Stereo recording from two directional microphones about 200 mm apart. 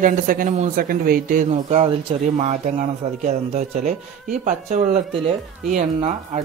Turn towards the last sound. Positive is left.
turn(degrees=-40)  # may be behind; listen again after turning